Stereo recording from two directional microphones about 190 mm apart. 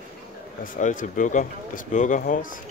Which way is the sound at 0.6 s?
40° left (ahead or behind).